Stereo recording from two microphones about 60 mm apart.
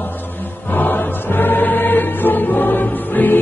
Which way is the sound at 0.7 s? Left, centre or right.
Left.